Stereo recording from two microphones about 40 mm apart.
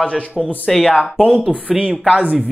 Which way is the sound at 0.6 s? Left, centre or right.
Centre.